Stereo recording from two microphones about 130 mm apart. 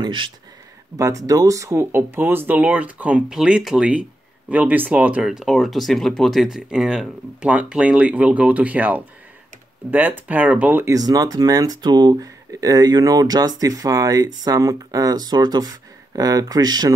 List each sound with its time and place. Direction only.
0.0 s speech: 40° right (ahead or behind)
0.9 s speech: 25° right (ahead or behind)
11.0 s speech: 30° right (ahead or behind)